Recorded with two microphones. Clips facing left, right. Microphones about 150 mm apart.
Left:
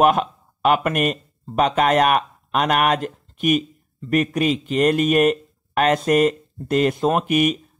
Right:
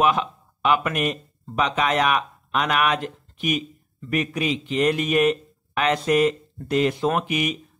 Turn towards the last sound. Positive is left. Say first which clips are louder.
# left 5 dB
turn(degrees=50)  # may be behind; listen again after turning